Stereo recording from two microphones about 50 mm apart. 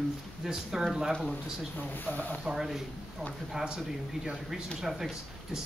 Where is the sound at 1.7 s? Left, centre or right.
Left.